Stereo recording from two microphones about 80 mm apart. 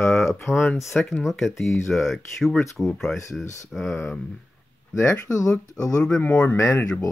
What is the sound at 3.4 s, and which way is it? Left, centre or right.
Speech, left.